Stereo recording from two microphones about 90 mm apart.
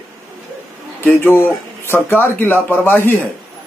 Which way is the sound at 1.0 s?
25° left (ahead or behind).